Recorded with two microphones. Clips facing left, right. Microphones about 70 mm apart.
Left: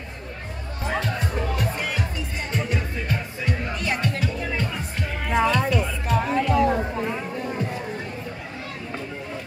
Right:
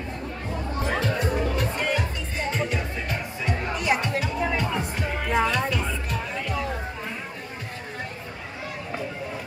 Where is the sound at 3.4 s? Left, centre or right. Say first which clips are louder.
Right 3 dB; centre.